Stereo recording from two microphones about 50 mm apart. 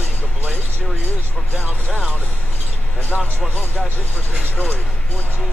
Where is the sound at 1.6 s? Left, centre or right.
Left.